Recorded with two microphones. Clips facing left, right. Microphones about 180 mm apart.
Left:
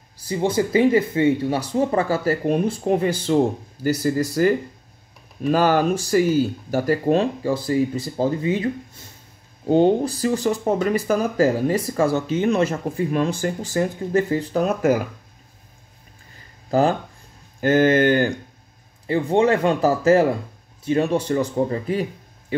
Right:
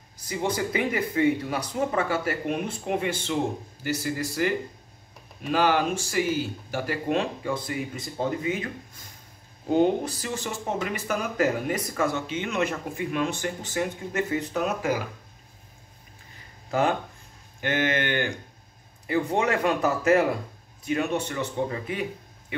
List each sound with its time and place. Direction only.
0.2 s speech: 30° left (ahead or behind)
16.7 s a man's voice: 35° left (ahead or behind)